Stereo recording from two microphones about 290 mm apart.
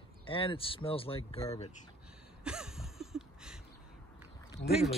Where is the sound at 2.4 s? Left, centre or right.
Centre.